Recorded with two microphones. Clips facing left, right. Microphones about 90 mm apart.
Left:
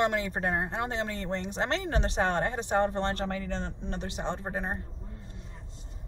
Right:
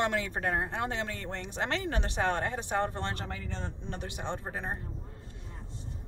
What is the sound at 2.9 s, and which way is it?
Speech, 60° left (ahead or behind).